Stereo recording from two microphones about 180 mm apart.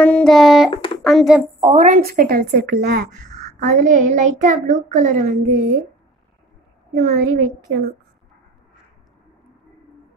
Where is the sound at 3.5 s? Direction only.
45° right (ahead or behind).